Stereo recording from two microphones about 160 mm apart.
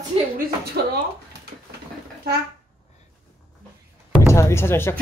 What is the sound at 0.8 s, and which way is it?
Speech, 90° right.